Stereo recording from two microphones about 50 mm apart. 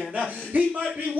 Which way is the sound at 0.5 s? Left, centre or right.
Right.